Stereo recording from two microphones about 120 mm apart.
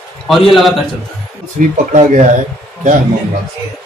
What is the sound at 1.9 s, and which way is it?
Speech, 80° right.